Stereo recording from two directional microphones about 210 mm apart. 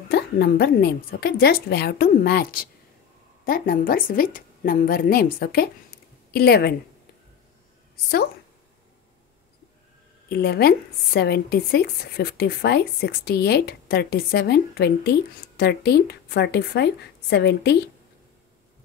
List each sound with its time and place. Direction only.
0.1 s speech: 50° left (ahead or behind)
7.9 s a woman's voice: 50° left (ahead or behind)
10.3 s speech: 50° left (ahead or behind)